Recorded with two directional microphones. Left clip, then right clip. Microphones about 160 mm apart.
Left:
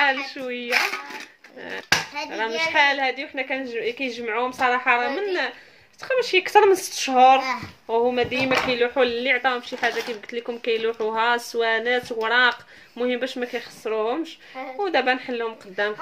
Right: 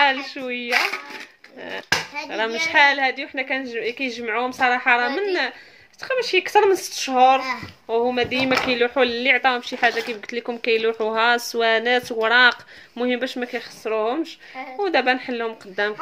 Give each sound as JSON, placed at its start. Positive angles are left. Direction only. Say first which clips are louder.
{"t": 0.0, "sound": "a woman's voice", "louder": "right 2 dB", "side_deg": -20}
{"t": 0.7, "sound": "speech", "louder": "right 1 dB", "side_deg": -10}
{"t": 2.2, "sound": "a woman's voice", "louder": "right 1 dB", "side_deg": -30}
{"t": 6.0, "sound": "speech", "louder": "even", "side_deg": -10}
{"t": 7.9, "sound": "speech", "louder": "even", "side_deg": -20}